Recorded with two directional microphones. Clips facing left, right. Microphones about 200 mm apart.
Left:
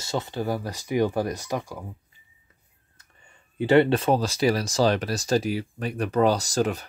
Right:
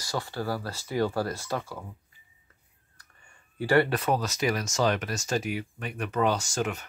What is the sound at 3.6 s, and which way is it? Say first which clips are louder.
Speech: left 5 dB; 20° left (ahead or behind).